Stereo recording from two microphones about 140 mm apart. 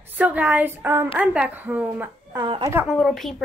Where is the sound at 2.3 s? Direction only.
25° right (ahead or behind).